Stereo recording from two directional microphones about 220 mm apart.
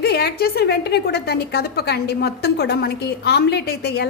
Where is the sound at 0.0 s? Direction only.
45° left (ahead or behind).